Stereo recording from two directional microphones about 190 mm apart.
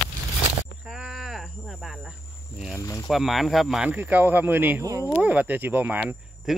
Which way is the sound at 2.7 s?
15° left (ahead or behind).